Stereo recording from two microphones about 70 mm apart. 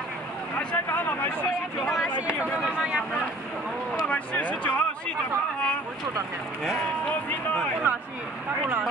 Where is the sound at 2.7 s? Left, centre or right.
Centre.